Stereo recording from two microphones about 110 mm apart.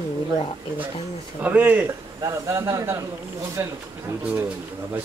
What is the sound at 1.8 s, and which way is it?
A man's voice, 30° right (ahead or behind).